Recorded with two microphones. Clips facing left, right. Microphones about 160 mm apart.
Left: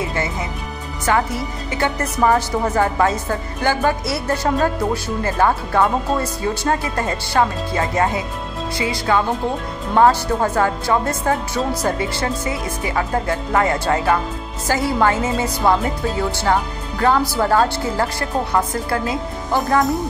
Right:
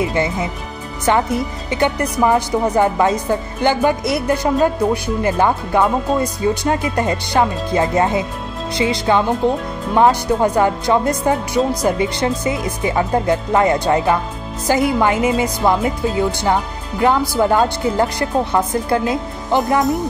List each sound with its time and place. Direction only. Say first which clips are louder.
0.1 s speech: right 5 dB; 20° right (ahead or behind)